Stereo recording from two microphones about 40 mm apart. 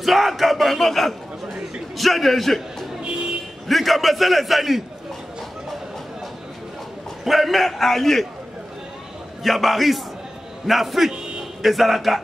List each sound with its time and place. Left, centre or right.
0.0 s a man's voice: centre
3.0 s vehicle: right
3.6 s a man's voice: centre
7.2 s a man's voice: centre
9.4 s a man's voice: centre